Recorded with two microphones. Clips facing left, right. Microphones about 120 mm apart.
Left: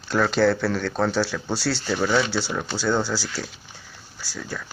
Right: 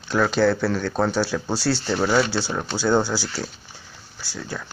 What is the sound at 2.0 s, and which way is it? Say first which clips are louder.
Speech: right 1 dB; 25° right (ahead or behind).